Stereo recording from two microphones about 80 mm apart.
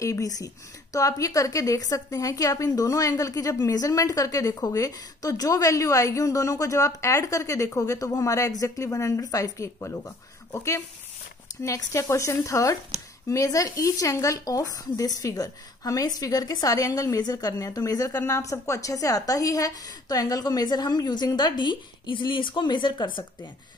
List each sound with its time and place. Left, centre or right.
0.0 s speech: left
9.8 s speech: left